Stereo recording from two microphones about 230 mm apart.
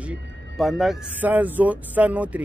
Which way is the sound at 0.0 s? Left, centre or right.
Centre.